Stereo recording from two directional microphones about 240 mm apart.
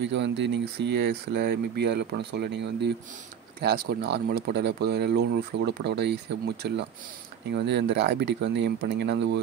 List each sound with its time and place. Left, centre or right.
0.0 s speech: right